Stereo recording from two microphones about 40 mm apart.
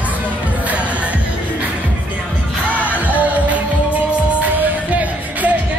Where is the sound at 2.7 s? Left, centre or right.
Right.